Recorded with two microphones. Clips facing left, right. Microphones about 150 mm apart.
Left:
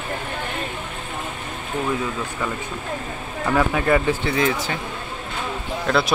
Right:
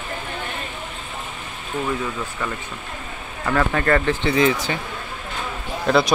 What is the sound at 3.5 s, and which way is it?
Speech, 10° left (ahead or behind).